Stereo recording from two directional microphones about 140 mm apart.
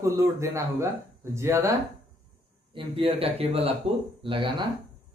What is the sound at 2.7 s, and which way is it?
A man's voice, 40° right (ahead or behind).